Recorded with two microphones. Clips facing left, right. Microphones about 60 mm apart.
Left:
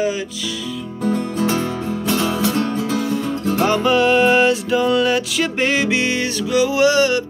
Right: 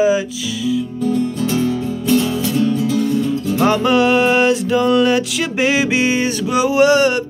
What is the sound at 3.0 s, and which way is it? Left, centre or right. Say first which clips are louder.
Music: right 4 dB; left.